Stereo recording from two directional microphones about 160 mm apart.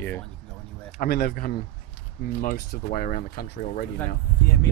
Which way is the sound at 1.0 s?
75° left (ahead or behind).